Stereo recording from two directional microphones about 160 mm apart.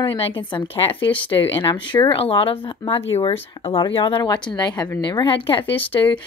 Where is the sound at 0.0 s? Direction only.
30° left (ahead or behind).